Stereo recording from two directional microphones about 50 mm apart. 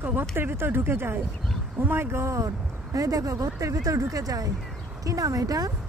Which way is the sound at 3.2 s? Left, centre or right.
Right.